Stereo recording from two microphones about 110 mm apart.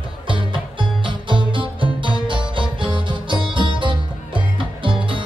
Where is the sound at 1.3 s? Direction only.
50° right (ahead or behind).